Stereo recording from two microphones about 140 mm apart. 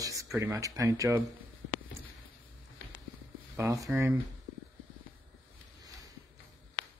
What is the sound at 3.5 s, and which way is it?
Speech, 20° right (ahead or behind).